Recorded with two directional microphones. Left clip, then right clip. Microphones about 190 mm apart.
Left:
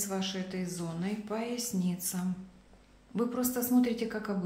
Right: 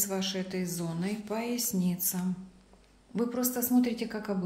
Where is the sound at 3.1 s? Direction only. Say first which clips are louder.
Right 1 dB; 15° right (ahead or behind).